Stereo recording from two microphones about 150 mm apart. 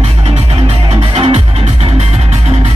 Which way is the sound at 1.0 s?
40° right (ahead or behind).